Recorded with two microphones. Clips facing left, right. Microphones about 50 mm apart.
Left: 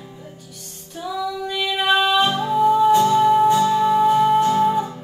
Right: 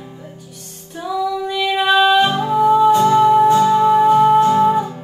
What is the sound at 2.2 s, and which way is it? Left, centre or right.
Music, right.